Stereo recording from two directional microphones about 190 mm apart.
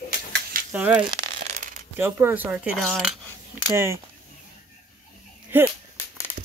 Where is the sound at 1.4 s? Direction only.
45° right (ahead or behind).